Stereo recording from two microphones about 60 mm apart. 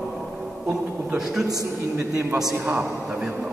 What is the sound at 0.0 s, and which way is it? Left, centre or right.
Music, centre.